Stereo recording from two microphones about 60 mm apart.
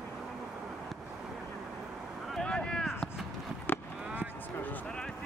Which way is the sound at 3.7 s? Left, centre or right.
Left.